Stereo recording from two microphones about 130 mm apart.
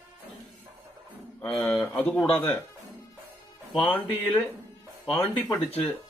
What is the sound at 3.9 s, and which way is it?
Speech, 15° left (ahead or behind).